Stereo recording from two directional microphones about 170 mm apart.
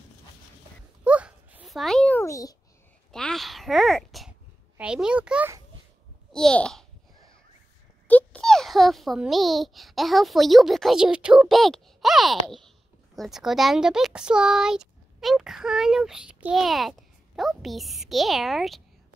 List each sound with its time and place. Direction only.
1.0 s a sound: 10° right (ahead or behind)
2.2 s a child's voice: 20° left (ahead or behind)
3.1 s a child's voice: 5° left (ahead or behind)
6.3 s a child's voice: 5° left (ahead or behind)
8.1 s a child's voice: 10° left (ahead or behind)